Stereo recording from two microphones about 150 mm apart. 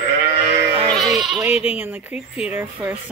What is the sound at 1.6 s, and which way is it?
Speech, 15° right (ahead or behind).